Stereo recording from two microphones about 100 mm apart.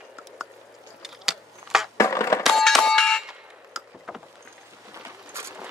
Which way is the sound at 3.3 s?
5° right (ahead or behind).